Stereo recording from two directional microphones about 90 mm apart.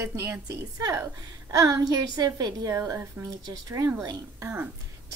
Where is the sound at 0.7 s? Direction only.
40° right (ahead or behind).